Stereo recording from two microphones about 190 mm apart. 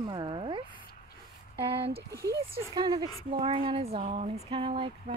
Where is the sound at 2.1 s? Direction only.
15° right (ahead or behind).